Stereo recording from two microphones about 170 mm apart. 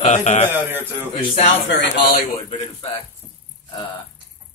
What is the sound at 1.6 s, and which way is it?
Speech, 85° left.